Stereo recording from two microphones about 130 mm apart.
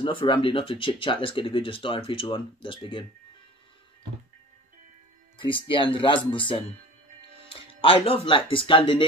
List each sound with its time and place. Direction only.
0.0 s speech: 40° left (ahead or behind)
5.4 s speech: 40° left (ahead or behind)